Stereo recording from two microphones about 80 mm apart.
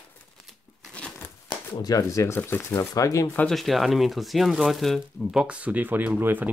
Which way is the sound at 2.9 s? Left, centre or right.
Left.